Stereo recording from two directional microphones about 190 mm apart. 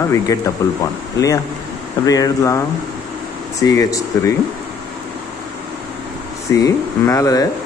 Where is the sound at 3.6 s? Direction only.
15° left (ahead or behind).